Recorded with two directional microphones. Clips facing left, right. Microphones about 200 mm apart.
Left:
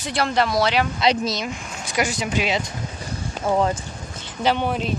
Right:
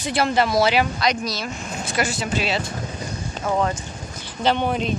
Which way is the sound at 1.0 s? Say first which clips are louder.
Left 3 dB; 25° left (ahead or behind).